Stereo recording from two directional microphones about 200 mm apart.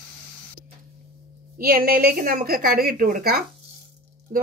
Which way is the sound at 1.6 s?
50° right (ahead or behind).